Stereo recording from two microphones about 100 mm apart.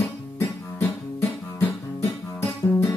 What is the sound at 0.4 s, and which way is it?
Music, 30° left (ahead or behind).